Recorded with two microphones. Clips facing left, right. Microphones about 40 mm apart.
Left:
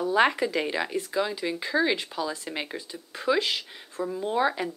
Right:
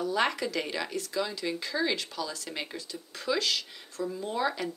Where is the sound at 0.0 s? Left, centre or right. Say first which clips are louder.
Left 6 dB; left.